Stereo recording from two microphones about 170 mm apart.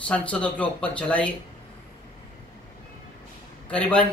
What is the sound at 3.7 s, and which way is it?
Speech, 10° left (ahead or behind).